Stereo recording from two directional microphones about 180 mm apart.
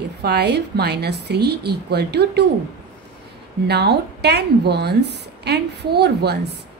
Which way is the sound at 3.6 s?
65° right (ahead or behind).